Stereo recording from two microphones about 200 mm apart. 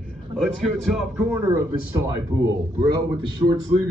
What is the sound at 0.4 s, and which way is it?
A man's voice, centre (ahead or behind).